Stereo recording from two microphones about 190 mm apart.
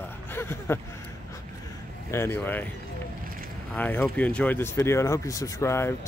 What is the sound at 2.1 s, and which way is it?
Speech, 10° left (ahead or behind).